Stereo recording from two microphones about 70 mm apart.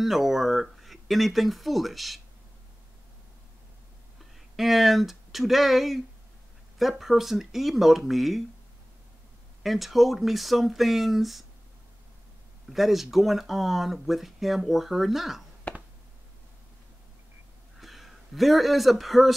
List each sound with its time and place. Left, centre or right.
0.0 s speech: centre
4.2 s speech: centre
9.6 s speech: centre
12.6 s speech: centre
15.7 s a sound: centre
17.7 s speech: centre